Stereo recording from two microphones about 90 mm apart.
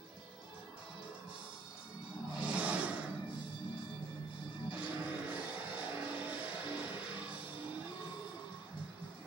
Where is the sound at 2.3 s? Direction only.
15° right (ahead or behind).